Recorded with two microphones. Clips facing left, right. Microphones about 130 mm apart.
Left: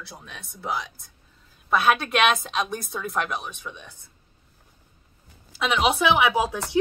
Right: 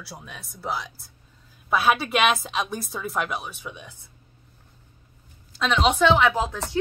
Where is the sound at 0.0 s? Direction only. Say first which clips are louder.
Right 1 dB; 5° right (ahead or behind).